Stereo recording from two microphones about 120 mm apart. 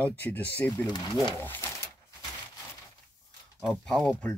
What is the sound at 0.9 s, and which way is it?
Speech, 35° left (ahead or behind).